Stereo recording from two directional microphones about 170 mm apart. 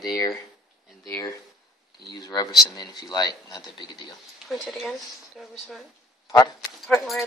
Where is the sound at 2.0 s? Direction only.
25° left (ahead or behind).